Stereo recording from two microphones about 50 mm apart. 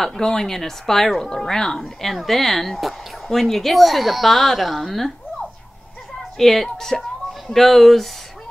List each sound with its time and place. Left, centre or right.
0.0 s speech: centre
6.3 s speech: centre